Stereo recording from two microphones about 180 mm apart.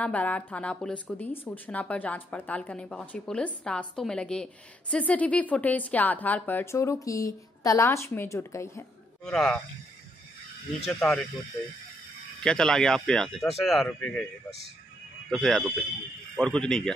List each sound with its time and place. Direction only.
0.0 s a woman's voice: 5° left (ahead or behind)
9.2 s speech: 5° left (ahead or behind)
10.9 s a woman's voice: 5° left (ahead or behind)
12.4 s speech: 5° left (ahead or behind)
15.2 s speech: centre (ahead or behind)